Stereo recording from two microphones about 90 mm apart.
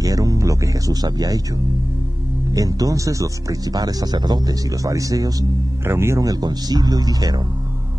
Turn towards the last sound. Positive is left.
turn(degrees=-45)  # may be behind; listen again after turning